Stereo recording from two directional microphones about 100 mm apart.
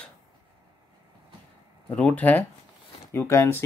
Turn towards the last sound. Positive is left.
turn(degrees=25)  # may be behind; listen again after turning